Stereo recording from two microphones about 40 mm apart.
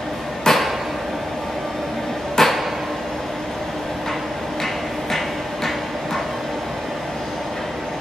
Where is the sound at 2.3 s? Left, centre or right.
Centre.